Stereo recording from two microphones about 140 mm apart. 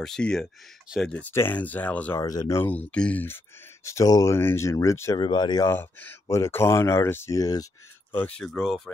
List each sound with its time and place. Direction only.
0.0 s speech: 5° left (ahead or behind)
2.1 s speech: 25° left (ahead or behind)
2.9 s speech: 10° left (ahead or behind)
3.8 s speech: 25° left (ahead or behind)
5.7 s speech: 15° left (ahead or behind)
8.1 s speech: 10° left (ahead or behind)
8.5 s speech: centre (ahead or behind)